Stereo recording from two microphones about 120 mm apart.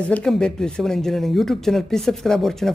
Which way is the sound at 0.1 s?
5° left (ahead or behind).